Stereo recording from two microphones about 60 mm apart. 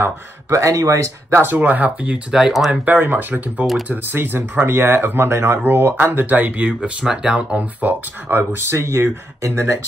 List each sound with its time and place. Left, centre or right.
0.5 s speech: right
1.3 s speech: right